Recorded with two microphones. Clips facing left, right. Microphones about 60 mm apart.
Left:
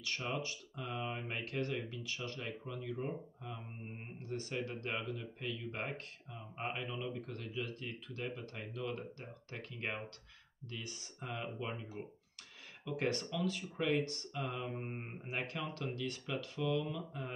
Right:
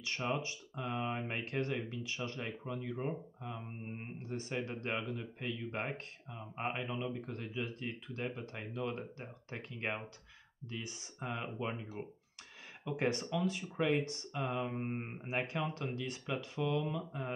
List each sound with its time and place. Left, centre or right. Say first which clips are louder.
0.0 s speech: right 3 dB; right